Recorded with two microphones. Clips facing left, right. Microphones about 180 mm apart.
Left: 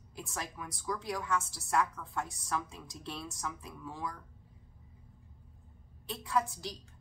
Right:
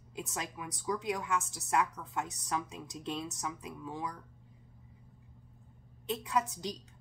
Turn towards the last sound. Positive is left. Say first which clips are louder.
# even
turn(degrees=-20)  # may be behind; listen again after turning